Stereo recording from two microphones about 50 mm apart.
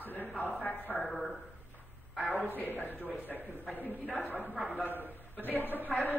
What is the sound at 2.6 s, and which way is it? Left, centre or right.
Speech, left.